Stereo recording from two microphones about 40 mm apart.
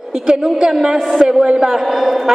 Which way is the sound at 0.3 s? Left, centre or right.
Centre.